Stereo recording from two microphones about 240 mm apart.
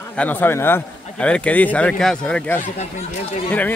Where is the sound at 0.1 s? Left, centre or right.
Centre.